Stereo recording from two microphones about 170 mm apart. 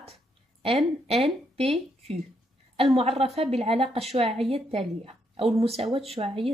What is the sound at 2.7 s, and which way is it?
A woman's voice, 35° right (ahead or behind).